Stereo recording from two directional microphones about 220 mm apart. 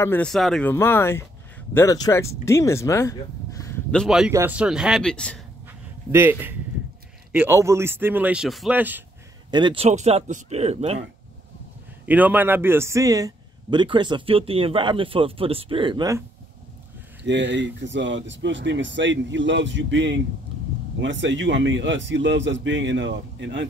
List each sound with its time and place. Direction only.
0.0 s speech: 5° left (ahead or behind)
5.7 s a sound: 10° right (ahead or behind)
7.3 s a man's voice: 10° right (ahead or behind)
9.5 s a man's voice: 20° right (ahead or behind)
12.1 s a man's voice: 5° right (ahead or behind)
17.2 s speech: 55° right (ahead or behind)